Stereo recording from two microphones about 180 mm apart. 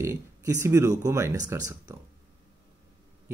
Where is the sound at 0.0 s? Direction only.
15° right (ahead or behind).